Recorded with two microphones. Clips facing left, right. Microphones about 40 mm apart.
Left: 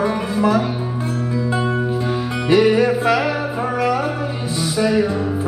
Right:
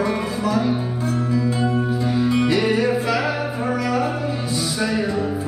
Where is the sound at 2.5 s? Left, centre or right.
Left.